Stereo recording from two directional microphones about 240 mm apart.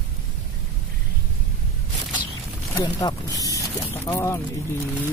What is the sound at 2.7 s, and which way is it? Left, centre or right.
Speech, centre.